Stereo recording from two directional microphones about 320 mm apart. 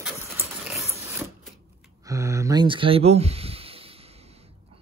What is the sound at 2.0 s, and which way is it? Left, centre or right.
Speech, centre.